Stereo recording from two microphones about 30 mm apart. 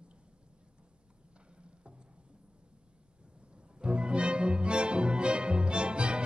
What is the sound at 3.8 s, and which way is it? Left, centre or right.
Music, right.